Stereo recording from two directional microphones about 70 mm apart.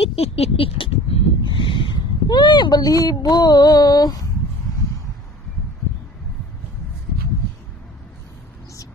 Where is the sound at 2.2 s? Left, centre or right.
Left.